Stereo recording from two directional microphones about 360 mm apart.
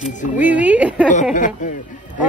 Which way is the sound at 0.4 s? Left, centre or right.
Centre.